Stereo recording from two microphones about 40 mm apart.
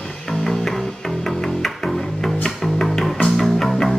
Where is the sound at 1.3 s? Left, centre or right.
Centre.